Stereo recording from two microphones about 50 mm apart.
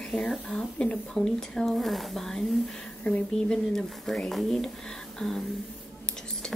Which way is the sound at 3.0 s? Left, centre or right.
Left.